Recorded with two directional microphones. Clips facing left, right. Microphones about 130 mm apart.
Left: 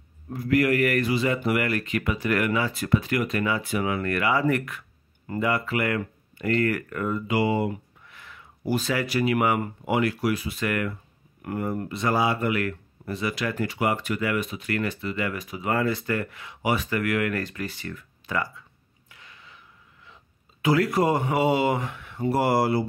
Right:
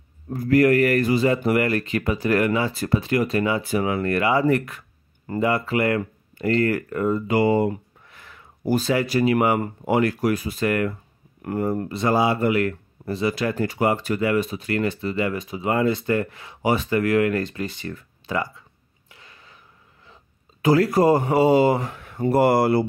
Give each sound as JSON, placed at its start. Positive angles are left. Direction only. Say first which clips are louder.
{"t": 0.3, "sound": "speech", "louder": "right 5 dB", "side_deg": -40}
{"t": 7.2, "sound": "speech", "louder": "right 4 dB", "side_deg": -45}
{"t": 19.0, "sound": "a sound", "louder": "right 1 dB", "side_deg": -35}
{"t": 20.6, "sound": "speech", "louder": "right 5 dB", "side_deg": -40}